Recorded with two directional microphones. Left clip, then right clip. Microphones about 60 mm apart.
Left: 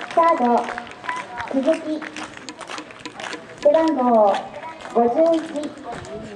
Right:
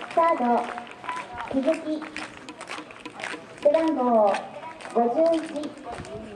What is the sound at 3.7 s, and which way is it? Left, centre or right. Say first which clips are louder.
Speech: left 6 dB; right.